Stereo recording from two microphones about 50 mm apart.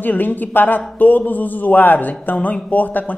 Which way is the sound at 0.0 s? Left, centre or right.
Left.